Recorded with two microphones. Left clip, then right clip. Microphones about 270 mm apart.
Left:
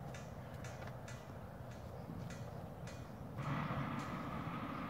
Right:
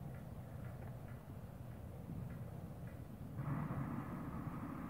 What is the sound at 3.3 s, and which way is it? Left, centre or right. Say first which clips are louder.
Vehicle: left 5 dB; left.